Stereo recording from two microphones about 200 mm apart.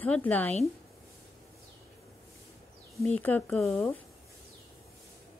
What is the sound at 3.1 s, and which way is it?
Speech, 5° left (ahead or behind).